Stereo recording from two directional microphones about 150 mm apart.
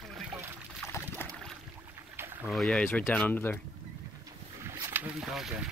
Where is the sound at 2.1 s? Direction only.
15° right (ahead or behind).